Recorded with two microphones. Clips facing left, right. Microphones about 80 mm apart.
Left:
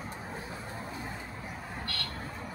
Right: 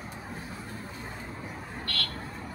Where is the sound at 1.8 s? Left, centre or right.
Centre.